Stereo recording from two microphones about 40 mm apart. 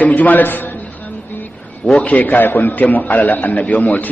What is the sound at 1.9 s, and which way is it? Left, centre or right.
A man's voice, left.